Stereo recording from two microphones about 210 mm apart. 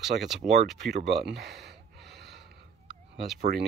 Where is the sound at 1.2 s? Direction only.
50° right (ahead or behind).